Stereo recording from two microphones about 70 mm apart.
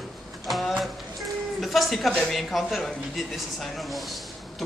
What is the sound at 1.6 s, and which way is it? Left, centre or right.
Speech, centre.